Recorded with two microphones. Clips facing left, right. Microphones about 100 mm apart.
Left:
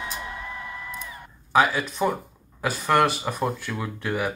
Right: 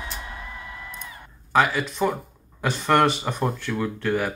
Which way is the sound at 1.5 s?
5° left (ahead or behind).